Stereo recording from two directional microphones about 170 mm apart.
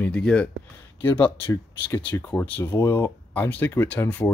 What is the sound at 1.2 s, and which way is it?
Speech, 30° left (ahead or behind).